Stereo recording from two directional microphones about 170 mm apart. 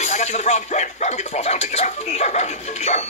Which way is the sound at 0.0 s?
40° left (ahead or behind).